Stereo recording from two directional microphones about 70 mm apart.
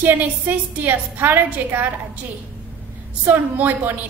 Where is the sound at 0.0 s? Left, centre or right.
Right.